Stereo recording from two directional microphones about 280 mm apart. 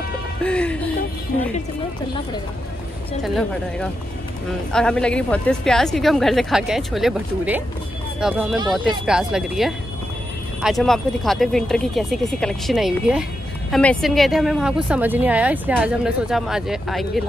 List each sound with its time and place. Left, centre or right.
0.4 s music: centre
1.5 s speech: centre
3.2 s a woman's voice: centre